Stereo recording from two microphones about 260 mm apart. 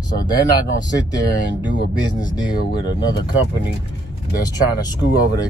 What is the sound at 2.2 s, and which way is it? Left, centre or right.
Speech, centre.